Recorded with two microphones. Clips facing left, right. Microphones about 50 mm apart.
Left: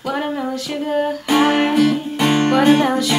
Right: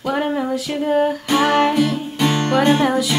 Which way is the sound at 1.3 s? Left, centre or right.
Centre.